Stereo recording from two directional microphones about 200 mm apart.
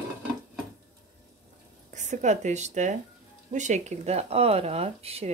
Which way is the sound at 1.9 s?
35° right (ahead or behind).